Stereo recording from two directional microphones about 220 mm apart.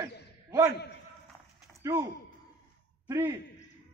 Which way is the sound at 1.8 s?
10° right (ahead or behind).